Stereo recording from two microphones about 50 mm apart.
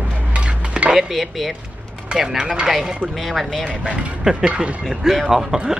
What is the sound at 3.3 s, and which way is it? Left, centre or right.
Speech, centre.